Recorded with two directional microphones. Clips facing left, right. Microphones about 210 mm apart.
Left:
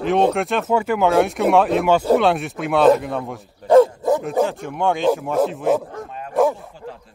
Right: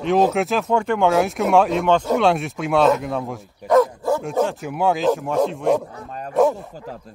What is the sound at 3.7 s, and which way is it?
Dog, 25° left (ahead or behind).